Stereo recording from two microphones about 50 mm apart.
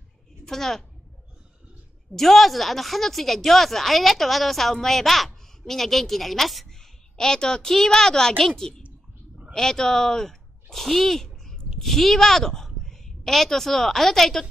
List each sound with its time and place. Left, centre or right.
0.5 s a woman's voice: centre
2.1 s a woman's voice: centre